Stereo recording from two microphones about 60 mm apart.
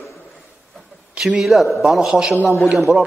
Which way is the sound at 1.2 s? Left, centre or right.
Centre.